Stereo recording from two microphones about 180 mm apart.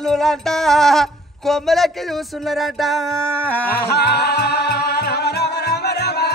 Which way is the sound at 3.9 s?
60° left (ahead or behind).